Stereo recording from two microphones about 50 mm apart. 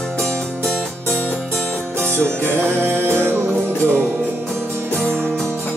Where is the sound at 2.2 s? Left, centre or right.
Right.